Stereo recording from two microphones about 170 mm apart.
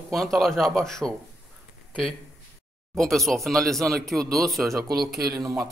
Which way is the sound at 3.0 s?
Centre (ahead or behind).